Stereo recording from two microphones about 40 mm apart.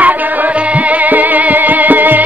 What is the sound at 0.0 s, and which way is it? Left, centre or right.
Music, right.